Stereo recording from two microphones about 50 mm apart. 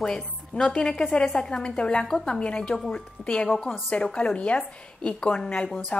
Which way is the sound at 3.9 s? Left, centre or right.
Left.